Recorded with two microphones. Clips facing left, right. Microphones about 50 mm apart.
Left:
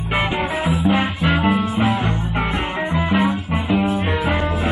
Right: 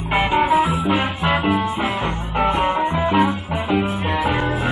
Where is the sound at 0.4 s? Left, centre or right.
Right.